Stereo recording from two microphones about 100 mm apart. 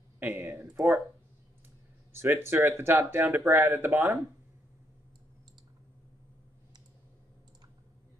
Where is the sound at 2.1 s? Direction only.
25° right (ahead or behind).